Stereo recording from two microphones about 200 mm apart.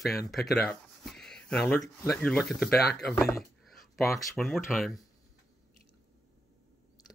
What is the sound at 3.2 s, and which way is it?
Speech, 15° left (ahead or behind).